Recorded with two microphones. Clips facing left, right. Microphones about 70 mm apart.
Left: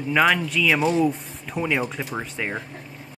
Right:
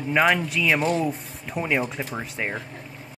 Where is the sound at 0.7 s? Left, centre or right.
Centre.